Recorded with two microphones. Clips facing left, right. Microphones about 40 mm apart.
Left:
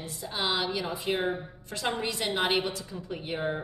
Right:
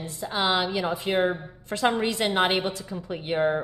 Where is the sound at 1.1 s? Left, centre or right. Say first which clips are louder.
Right 5 dB; centre.